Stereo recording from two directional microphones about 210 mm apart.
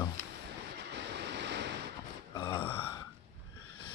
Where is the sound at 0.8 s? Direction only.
55° right (ahead or behind).